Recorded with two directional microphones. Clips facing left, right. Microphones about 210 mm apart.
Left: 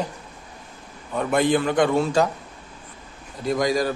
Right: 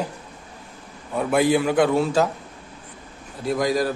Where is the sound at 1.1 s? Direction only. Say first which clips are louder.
Right 1 dB; 5° right (ahead or behind).